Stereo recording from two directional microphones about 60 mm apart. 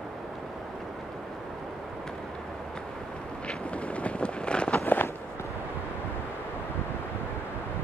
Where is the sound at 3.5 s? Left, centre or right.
Left.